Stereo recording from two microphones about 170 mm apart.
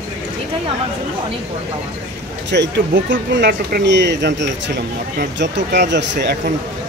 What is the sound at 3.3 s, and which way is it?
A man's voice, 80° right.